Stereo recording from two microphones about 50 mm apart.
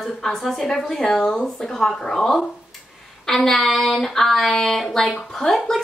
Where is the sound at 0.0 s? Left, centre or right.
Centre.